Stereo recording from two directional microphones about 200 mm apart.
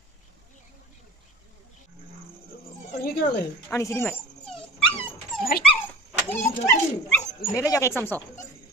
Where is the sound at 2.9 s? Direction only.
50° left (ahead or behind).